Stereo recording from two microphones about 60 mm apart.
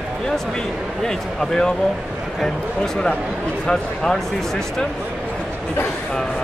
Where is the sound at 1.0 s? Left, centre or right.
Centre.